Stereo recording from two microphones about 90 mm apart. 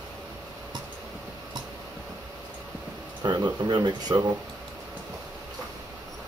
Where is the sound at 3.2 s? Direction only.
50° right (ahead or behind).